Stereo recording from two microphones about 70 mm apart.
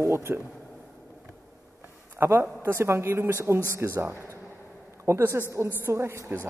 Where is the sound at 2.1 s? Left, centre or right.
Right.